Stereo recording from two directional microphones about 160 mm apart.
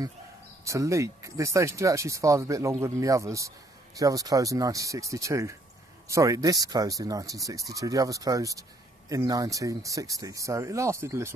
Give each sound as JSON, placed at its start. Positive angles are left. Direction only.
{"t": 0.7, "sound": "a man's voice", "side_deg": -20}